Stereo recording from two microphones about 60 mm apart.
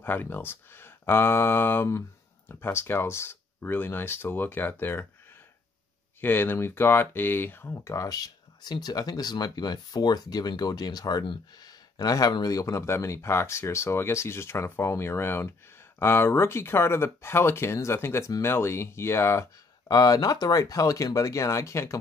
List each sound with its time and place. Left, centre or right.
0.0 s speech: left
6.2 s speech: left
7.7 s speech: left
8.9 s speech: left
12.8 s speech: left
19.9 s speech: left